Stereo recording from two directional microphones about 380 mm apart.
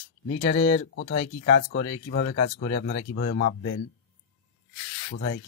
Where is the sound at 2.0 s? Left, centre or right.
Left.